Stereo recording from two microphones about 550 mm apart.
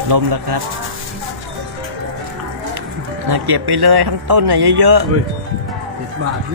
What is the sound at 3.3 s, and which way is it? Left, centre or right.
A man's voice, right.